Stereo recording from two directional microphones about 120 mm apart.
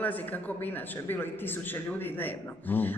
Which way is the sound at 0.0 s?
15° left (ahead or behind).